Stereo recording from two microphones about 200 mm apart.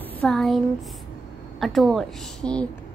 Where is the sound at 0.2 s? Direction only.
Centre (ahead or behind).